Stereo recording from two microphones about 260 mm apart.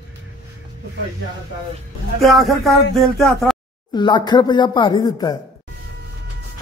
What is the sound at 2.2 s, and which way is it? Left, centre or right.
Speech, centre.